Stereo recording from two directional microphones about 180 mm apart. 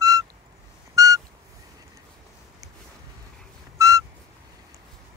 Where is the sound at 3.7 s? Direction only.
20° right (ahead or behind).